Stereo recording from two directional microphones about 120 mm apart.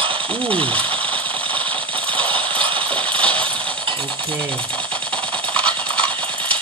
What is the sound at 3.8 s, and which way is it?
Coin, 45° right (ahead or behind).